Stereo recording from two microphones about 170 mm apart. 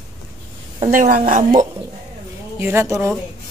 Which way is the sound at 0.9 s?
55° right (ahead or behind).